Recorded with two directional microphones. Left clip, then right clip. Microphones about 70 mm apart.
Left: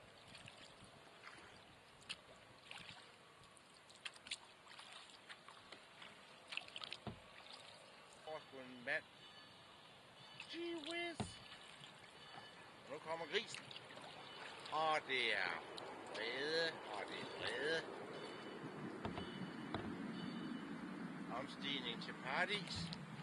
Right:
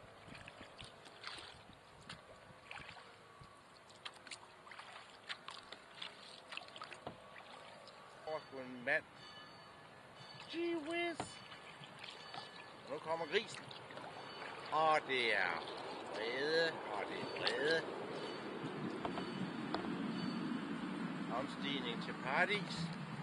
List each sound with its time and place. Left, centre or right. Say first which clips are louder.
2.7 s boat: right 4 dB; left
4.3 s boat: left 1 dB; left
8.3 s a sound: right 6 dB; centre
10.4 s speech: right 6 dB; centre
12.4 s boat: right 6 dB; centre
13.6 s a sound: right 3 dB; left
13.9 s boat: right 5 dB; centre
14.7 s speech: right 5 dB; centre
16.9 s vehicle: right 5 dB; centre